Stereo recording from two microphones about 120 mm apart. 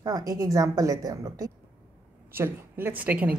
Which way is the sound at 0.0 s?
30° right (ahead or behind).